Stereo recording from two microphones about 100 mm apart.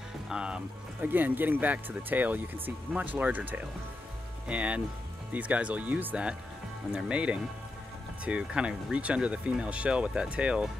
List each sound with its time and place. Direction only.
0.3 s speech: 10° right (ahead or behind)